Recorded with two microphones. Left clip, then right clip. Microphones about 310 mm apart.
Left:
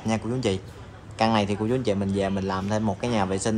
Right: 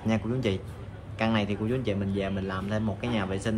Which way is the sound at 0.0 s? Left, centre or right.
Centre.